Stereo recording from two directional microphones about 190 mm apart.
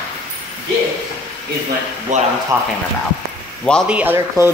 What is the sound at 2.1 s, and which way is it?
Speech, 40° right (ahead or behind).